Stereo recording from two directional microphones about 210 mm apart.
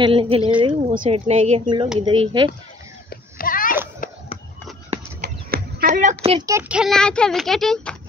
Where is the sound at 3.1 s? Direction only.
45° left (ahead or behind).